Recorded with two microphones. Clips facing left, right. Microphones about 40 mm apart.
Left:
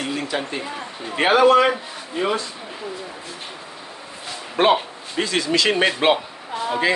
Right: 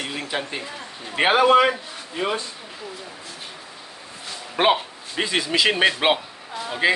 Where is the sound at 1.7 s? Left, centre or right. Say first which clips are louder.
Left 2 dB; centre.